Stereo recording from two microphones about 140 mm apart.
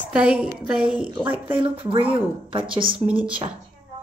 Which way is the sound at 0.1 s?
10° right (ahead or behind).